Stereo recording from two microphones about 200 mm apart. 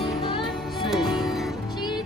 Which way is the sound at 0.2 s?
25° left (ahead or behind).